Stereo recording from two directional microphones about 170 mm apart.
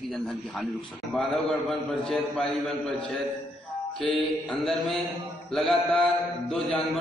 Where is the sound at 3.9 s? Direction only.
5° left (ahead or behind).